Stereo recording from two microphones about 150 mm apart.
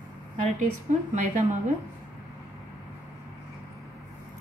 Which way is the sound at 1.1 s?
55° right (ahead or behind).